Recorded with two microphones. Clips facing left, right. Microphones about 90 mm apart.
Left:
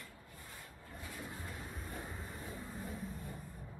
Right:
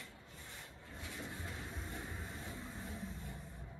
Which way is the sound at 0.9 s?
20° right (ahead or behind).